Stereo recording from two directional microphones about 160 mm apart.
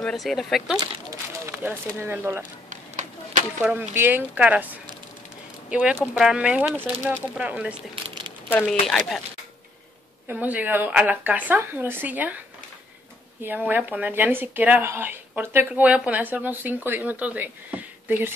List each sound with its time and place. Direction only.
0.0 s speech: centre (ahead or behind)
1.4 s speech: 10° right (ahead or behind)
2.7 s a sound: 50° right (ahead or behind)
3.6 s speech: 15° right (ahead or behind)
5.7 s speech: 10° right (ahead or behind)
7.9 s crumpling: 30° right (ahead or behind)
8.5 s speech: 10° left (ahead or behind)
10.2 s speech: 10° right (ahead or behind)
13.4 s speech: 10° right (ahead or behind)